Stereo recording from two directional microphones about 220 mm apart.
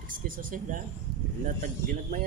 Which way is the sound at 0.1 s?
40° right (ahead or behind).